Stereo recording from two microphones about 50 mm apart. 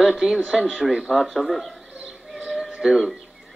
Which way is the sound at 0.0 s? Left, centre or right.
Centre.